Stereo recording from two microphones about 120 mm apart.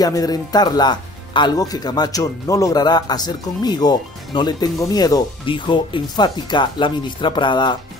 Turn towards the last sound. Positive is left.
turn(degrees=40)  # may be behind; listen again after turning